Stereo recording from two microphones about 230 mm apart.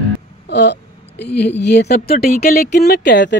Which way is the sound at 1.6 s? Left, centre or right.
Left.